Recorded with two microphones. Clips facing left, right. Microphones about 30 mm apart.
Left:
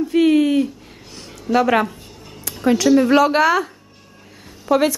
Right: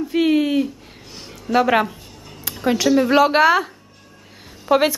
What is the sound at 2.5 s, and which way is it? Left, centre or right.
A woman's voice, centre.